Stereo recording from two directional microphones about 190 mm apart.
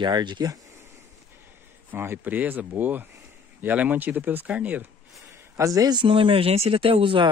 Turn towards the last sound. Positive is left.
turn(degrees=-25)  # may be behind; listen again after turning